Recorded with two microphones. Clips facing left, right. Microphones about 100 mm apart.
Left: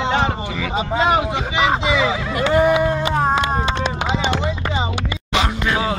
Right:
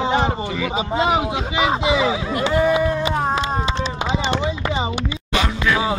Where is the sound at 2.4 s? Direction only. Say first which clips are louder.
Left 3 dB; 50° left (ahead or behind).